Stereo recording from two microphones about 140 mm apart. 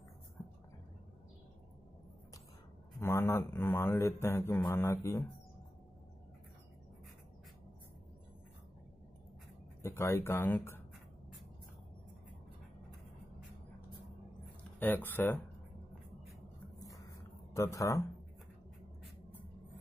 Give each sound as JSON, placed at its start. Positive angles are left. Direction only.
{"t": 3.0, "sound": "a man's voice", "side_deg": 15}
{"t": 9.8, "sound": "a man's voice", "side_deg": 20}
{"t": 14.8, "sound": "a man's voice", "side_deg": 15}
{"t": 16.8, "sound": "a sound", "side_deg": 25}
{"t": 17.6, "sound": "speech", "side_deg": 20}